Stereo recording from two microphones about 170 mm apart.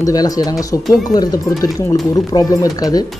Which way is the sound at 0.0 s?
20° left (ahead or behind).